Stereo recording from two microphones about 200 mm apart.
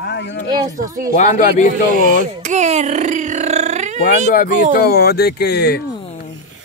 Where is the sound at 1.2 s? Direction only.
35° left (ahead or behind).